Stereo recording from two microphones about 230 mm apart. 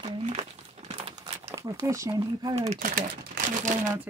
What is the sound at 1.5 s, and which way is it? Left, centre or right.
Speech, centre.